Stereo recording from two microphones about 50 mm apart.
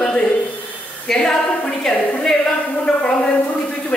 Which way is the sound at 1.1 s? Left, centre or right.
Centre.